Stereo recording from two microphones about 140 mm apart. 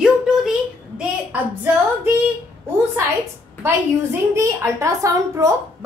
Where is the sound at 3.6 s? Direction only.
20° right (ahead or behind).